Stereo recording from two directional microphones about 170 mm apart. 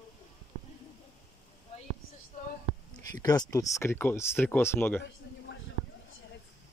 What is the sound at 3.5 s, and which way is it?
Speech, 20° left (ahead or behind).